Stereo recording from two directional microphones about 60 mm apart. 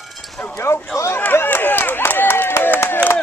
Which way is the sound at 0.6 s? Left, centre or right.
Left.